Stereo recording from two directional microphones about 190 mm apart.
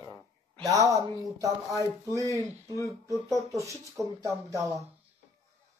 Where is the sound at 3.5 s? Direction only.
15° right (ahead or behind).